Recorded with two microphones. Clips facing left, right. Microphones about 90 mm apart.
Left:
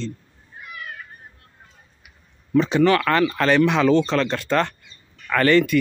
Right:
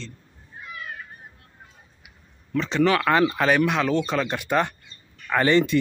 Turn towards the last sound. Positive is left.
turn(degrees=-20)  # may be behind; listen again after turning